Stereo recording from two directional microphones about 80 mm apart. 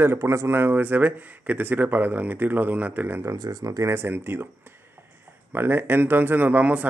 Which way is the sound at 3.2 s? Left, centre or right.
Right.